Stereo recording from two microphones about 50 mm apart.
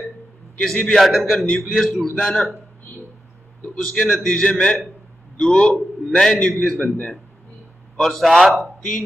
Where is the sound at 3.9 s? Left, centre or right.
Centre.